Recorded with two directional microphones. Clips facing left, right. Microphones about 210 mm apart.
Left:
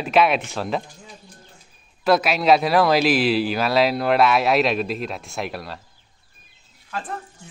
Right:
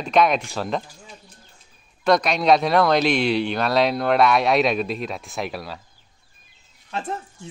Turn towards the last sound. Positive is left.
turn(degrees=-25)  # may be behind; listen again after turning